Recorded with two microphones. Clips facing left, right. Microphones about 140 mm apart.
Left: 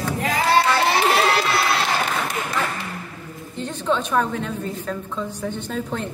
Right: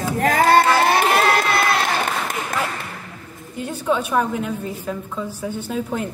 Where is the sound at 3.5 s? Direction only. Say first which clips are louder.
Right 1 dB; 10° right (ahead or behind).